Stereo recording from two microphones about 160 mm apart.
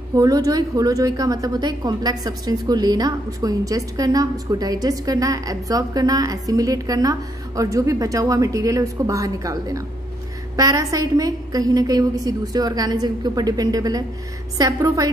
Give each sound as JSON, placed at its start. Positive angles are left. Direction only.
{"t": 0.1, "sound": "a woman's voice", "side_deg": -20}